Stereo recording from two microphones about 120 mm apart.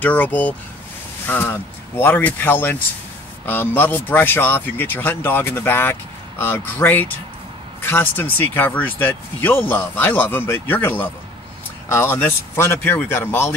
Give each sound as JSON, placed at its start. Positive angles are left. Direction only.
{"t": 0.0, "sound": "speech", "side_deg": 15}